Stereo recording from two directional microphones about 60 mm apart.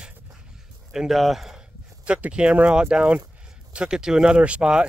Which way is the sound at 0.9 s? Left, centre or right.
Centre.